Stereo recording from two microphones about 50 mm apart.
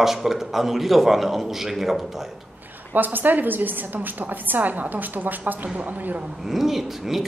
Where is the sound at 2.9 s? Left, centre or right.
Right.